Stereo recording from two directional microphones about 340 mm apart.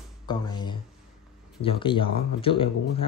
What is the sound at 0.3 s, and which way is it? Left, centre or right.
Speech, centre.